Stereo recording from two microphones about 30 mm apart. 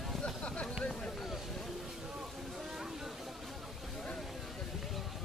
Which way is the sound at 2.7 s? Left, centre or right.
Centre.